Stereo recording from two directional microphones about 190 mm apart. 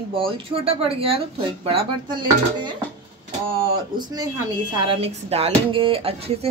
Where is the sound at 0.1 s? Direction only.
30° right (ahead or behind).